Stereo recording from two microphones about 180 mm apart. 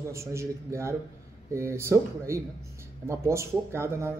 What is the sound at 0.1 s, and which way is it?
A man's voice, 15° right (ahead or behind).